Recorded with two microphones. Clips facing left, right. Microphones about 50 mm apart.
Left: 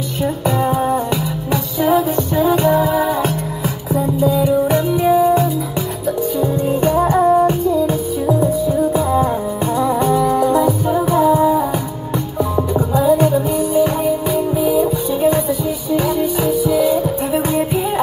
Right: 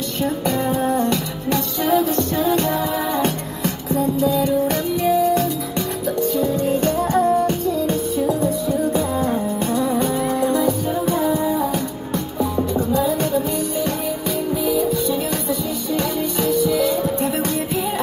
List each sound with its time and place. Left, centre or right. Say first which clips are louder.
0.2 s music: left 3 dB; centre
9.7 s music: left 6 dB; centre
12.7 s music: left 7 dB; centre